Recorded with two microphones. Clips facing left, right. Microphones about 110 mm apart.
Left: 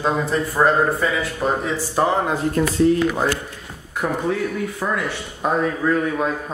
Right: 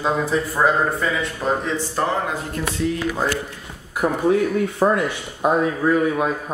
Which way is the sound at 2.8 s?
35° left (ahead or behind).